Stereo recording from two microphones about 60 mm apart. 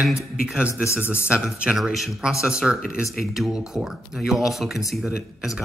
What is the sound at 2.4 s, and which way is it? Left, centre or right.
Speech, centre.